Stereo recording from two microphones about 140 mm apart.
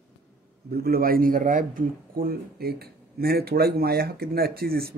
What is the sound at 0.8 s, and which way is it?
A man's voice, 90° right.